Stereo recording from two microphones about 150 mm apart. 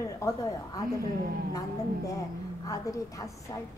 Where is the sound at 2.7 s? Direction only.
20° left (ahead or behind).